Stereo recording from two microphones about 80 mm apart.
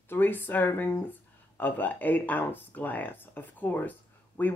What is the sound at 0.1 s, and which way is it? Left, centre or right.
Speech, left.